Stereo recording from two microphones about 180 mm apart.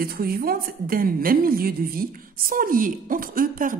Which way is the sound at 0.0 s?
55° right (ahead or behind).